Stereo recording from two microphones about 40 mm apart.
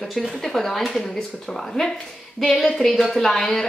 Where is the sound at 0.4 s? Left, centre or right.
Centre.